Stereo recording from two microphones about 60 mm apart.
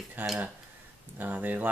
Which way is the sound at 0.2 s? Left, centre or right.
Right.